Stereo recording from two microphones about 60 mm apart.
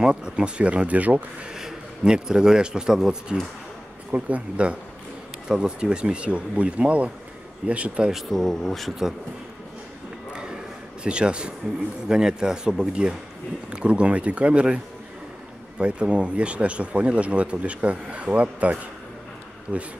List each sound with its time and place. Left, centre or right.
0.0 s speech: centre
1.5 s a man's voice: centre
4.1 s speech: right
8.1 s speech: centre
11.1 s speech: centre
15.8 s speech: centre